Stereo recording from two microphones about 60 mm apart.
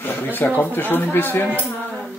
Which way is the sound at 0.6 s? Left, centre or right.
Left.